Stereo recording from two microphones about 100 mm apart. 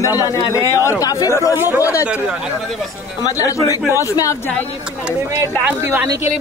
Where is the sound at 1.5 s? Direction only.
20° right (ahead or behind).